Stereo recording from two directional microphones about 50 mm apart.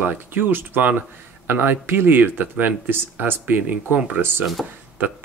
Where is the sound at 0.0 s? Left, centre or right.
Right.